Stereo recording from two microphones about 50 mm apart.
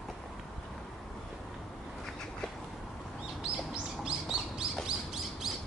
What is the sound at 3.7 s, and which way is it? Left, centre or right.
Bird, centre.